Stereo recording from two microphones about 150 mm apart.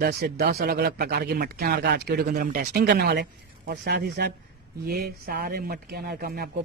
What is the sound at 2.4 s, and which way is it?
Speech, 65° right (ahead or behind).